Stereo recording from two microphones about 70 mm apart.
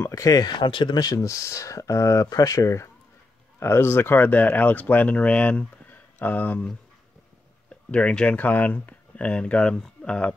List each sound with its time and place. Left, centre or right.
0.0 s speech: left
3.5 s speech: left
7.7 s speech: centre